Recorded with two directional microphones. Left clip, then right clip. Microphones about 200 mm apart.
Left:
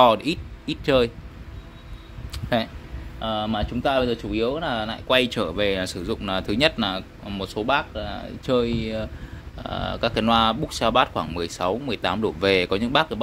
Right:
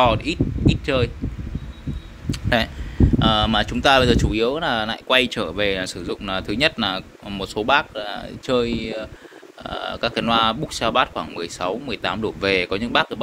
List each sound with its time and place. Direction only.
0.0 s speech: 20° left (ahead or behind)
2.3 s speech: 5° left (ahead or behind)
3.2 s speech: 5° right (ahead or behind)
5.0 s speech: 10° left (ahead or behind)
6.9 s speech: 5° left (ahead or behind)